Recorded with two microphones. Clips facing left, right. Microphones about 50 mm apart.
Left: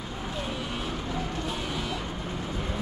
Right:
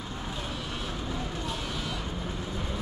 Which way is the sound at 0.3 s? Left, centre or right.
Centre.